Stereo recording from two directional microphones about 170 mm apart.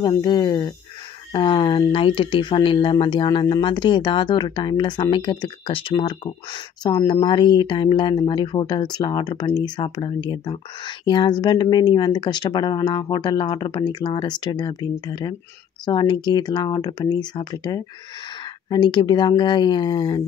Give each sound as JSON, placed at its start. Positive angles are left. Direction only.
{"t": 0.0, "sound": "speech", "side_deg": 25}